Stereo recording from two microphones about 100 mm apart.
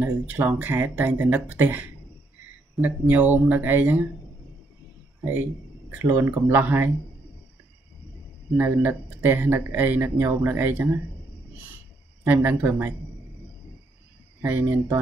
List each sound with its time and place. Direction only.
0.0 s speech: 20° right (ahead or behind)
5.3 s speech: 20° right (ahead or behind)
8.5 s speech: 20° right (ahead or behind)
12.3 s speech: 20° right (ahead or behind)
14.4 s speech: 20° right (ahead or behind)